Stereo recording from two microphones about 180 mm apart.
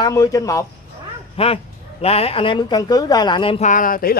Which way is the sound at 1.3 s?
30° left (ahead or behind).